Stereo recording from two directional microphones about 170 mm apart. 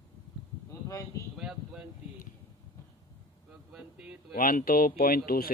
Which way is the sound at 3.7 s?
5° right (ahead or behind).